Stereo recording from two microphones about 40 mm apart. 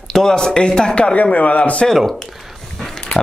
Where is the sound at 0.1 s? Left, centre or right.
Centre.